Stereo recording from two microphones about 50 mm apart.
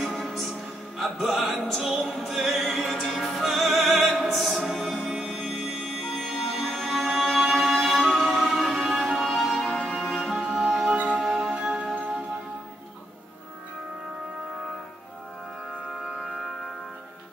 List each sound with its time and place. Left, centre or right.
0.0 s music: centre
11.5 s music: centre
11.8 s music: right